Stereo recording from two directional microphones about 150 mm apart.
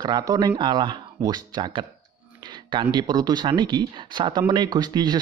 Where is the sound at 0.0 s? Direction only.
25° right (ahead or behind).